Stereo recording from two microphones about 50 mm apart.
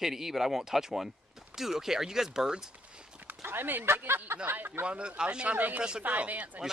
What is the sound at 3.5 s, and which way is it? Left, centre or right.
Speech, right.